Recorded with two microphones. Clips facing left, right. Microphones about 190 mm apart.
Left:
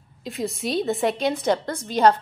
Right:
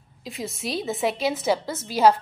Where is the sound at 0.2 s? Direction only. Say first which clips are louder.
Left 4 dB; centre (ahead or behind).